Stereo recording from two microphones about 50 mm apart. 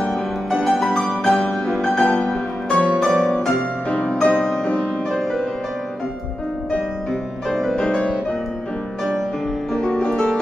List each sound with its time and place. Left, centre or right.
0.5 s music: centre
2.9 s music: centre
3.9 s music: left
7.7 s piano: centre
9.8 s music: centre